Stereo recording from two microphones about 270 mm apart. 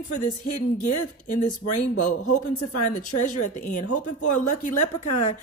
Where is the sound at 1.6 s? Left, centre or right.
Left.